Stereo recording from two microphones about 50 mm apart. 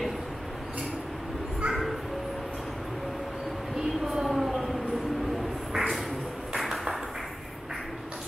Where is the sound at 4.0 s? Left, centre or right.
Centre.